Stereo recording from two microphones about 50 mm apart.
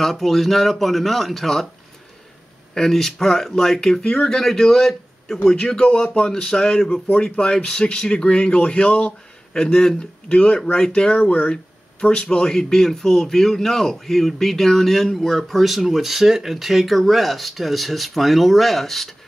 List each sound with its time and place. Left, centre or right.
0.0 s speech: centre
2.7 s speech: centre
5.6 s speech: centre